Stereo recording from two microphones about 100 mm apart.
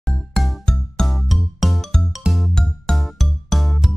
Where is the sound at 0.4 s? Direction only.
5° left (ahead or behind).